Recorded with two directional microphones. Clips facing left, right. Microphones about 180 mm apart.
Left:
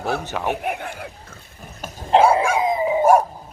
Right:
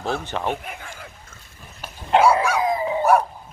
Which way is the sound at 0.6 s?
65° left (ahead or behind).